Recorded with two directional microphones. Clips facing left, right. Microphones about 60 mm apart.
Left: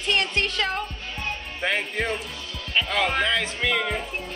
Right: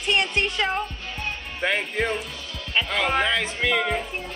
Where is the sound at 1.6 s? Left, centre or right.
Centre.